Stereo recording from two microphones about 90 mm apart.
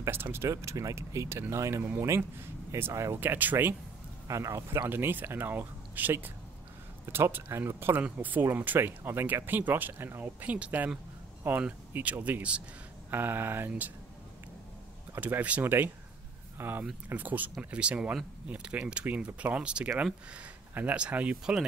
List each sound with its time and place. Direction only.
0.0 s speech: 25° right (ahead or behind)
3.2 s speech: 20° right (ahead or behind)
4.3 s speech: 35° right (ahead or behind); by 13.9 s 20° right (ahead or behind)
15.1 s speech: 20° right (ahead or behind)